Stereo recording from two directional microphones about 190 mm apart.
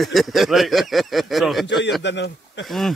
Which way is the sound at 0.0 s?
Centre (ahead or behind).